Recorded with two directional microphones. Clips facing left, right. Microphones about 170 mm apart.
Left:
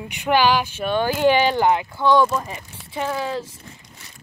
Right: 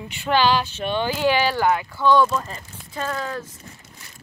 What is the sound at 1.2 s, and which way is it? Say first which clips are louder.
Speech: left 3 dB; 20° left (ahead or behind).